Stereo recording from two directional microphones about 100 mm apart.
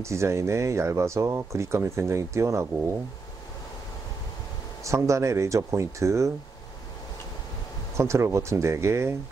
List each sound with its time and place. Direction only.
0.0 s speech: 30° right (ahead or behind)
4.8 s speech: 30° right (ahead or behind)
8.0 s speech: 30° right (ahead or behind)